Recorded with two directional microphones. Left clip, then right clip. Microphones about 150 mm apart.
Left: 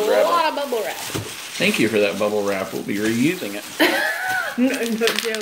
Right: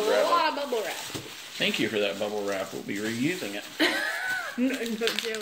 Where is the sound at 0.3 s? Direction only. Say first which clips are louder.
Left 5 dB; 15° right (ahead or behind).